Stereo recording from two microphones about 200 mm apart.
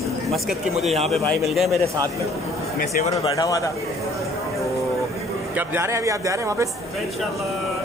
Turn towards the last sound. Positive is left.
turn(degrees=-15)  # may be behind; listen again after turning